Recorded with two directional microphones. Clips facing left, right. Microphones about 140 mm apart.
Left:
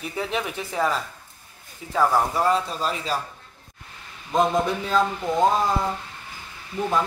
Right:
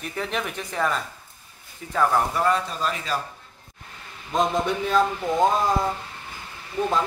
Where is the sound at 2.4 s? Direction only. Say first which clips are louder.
Left 1 dB; 30° left (ahead or behind).